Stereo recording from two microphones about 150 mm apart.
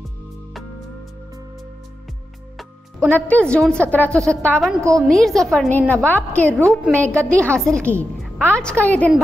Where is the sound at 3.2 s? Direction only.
10° left (ahead or behind).